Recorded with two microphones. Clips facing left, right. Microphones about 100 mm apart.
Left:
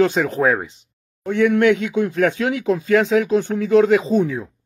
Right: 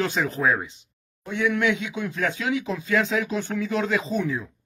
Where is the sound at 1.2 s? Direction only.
55° left (ahead or behind); by 4.5 s 40° left (ahead or behind).